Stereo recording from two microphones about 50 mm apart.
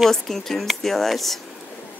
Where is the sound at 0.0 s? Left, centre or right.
Centre.